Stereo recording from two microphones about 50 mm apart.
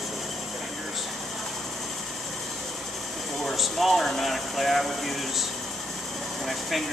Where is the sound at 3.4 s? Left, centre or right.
Centre.